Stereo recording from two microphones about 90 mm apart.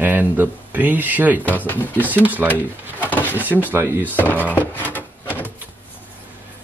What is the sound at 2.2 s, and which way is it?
Speech, 20° right (ahead or behind).